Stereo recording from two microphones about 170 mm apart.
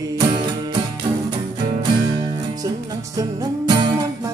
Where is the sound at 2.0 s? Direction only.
25° right (ahead or behind).